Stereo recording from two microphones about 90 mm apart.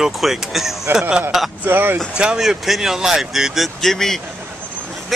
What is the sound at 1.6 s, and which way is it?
Speech, 25° right (ahead or behind).